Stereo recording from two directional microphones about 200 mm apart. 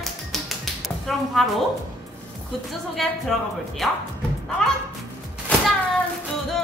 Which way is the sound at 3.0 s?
Centre (ahead or behind).